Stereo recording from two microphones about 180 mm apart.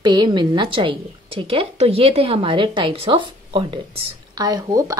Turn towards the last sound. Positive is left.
turn(degrees=-20)  # may be behind; listen again after turning